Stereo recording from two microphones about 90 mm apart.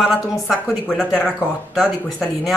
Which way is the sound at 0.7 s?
5° left (ahead or behind).